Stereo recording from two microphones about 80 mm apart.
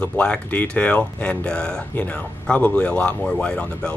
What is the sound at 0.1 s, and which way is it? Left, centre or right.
Speech, centre.